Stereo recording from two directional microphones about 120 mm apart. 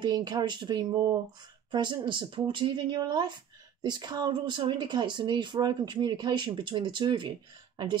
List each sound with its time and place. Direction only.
0.0 s speech: 35° right (ahead or behind)